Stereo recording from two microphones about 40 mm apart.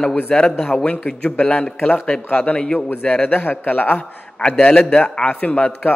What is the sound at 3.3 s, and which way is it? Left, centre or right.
Speech, left.